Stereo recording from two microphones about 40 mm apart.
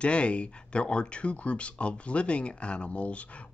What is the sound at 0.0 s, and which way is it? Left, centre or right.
Speech, left.